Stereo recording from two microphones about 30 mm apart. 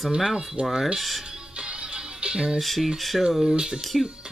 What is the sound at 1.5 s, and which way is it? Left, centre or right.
Music, right.